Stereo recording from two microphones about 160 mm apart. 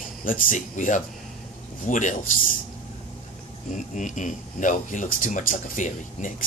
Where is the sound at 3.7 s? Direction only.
50° left (ahead or behind).